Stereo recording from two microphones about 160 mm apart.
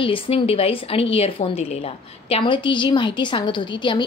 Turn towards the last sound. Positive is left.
turn(degrees=30)  # may be behind; listen again after turning